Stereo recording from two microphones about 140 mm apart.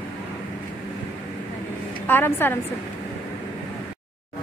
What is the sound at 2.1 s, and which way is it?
Speech, 15° left (ahead or behind).